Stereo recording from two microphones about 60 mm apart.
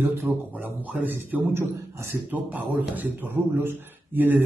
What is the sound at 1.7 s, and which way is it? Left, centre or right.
Speech, right.